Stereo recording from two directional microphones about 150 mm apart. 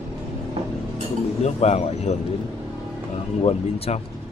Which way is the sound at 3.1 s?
45° left (ahead or behind).